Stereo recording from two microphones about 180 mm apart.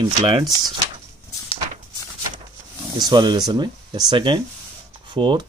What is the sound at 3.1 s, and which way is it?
Speech, 25° right (ahead or behind).